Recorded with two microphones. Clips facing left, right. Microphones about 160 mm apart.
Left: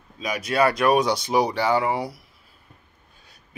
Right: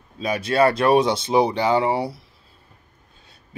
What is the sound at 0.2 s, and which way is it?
Speech, 30° right (ahead or behind).